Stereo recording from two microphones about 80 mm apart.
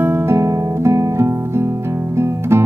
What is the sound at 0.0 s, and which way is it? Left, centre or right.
Music, right.